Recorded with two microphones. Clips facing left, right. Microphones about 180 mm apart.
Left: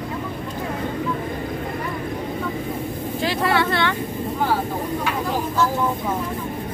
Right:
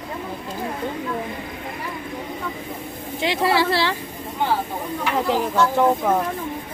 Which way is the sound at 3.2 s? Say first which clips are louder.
Right 1 dB; 25° right (ahead or behind).